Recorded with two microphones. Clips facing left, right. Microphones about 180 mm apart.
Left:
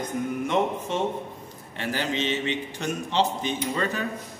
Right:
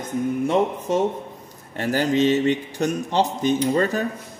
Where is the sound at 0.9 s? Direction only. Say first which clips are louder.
Right 6 dB; 40° right (ahead or behind).